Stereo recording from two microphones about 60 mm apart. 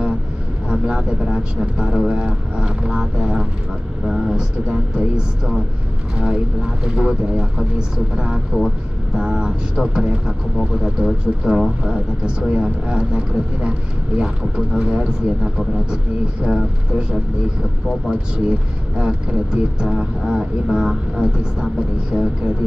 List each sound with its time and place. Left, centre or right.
0.7 s speech: centre
16.4 s speech: centre